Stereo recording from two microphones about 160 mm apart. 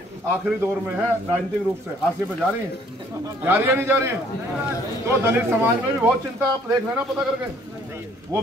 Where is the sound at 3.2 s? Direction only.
15° right (ahead or behind).